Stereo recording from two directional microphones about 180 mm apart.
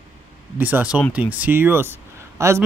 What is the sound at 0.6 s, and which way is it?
Speech, 10° right (ahead or behind).